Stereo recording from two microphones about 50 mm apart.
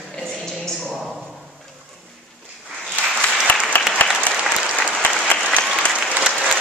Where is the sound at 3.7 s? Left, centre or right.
Left.